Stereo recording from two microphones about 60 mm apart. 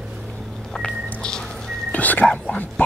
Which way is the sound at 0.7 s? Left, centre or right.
Centre.